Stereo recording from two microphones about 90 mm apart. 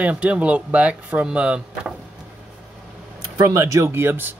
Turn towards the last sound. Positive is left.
turn(degrees=-25)  # may be behind; listen again after turning